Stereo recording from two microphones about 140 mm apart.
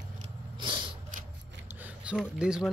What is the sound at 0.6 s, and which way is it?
Snort, 35° right (ahead or behind).